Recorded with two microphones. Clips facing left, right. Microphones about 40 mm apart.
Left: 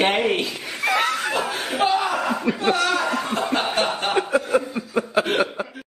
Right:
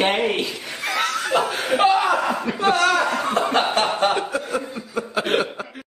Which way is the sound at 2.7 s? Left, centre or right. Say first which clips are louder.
Right 5 dB; right.